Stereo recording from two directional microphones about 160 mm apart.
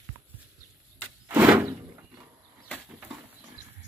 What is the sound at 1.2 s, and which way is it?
Sliding door, 10° right (ahead or behind).